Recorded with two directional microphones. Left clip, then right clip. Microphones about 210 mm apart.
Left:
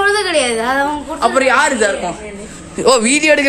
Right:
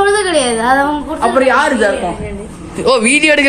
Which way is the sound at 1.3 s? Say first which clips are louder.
Right 2 dB; 10° left (ahead or behind).